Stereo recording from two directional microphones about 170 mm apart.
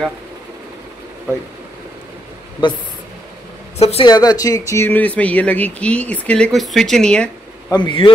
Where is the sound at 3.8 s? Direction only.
40° left (ahead or behind).